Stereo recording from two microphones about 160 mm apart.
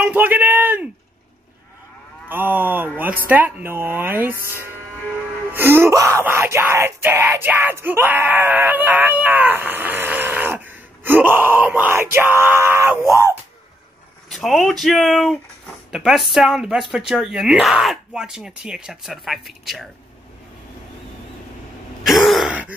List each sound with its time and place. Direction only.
0.0 s music: 10° right (ahead or behind)
2.2 s music: 10° right (ahead or behind)
5.5 s music: 15° right (ahead or behind)
13.1 s speech: 15° right (ahead or behind)
14.3 s speech: centre (ahead or behind)
22.0 s throat clearing: centre (ahead or behind)